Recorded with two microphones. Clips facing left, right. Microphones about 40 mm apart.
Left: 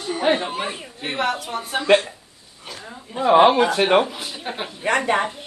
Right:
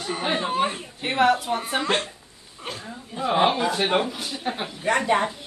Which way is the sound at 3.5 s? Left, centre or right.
Left.